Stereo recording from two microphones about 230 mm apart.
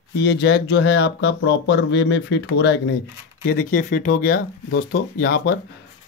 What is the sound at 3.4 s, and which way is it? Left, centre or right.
Speech, left.